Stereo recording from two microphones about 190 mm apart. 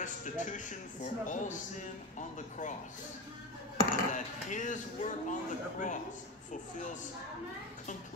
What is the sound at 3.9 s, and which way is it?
Speech, 40° left (ahead or behind).